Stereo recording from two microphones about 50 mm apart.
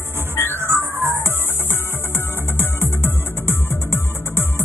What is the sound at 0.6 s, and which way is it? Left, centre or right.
Music, right.